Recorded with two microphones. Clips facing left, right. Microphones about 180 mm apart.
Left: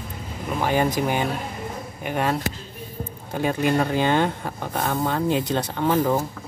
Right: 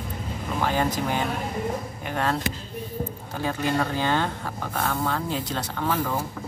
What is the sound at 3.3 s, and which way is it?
Speech, 20° left (ahead or behind).